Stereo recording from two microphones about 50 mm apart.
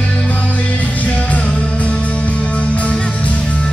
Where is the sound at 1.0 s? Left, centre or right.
Left.